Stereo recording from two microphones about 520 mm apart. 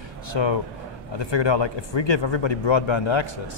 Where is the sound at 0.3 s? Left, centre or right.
Left.